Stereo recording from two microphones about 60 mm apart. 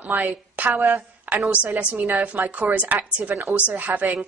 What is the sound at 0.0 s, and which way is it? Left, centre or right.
A woman's voice, right.